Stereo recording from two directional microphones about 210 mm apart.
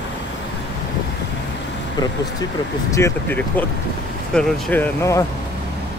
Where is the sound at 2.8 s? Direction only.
15° left (ahead or behind).